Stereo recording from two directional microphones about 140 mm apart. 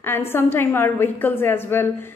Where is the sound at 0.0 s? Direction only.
15° left (ahead or behind).